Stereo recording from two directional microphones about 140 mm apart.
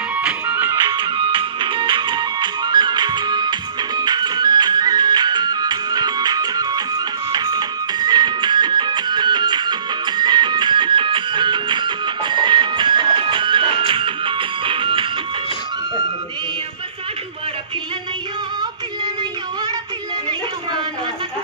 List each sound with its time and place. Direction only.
0.5 s music: 15° right (ahead or behind)
0.8 s music: 35° right (ahead or behind)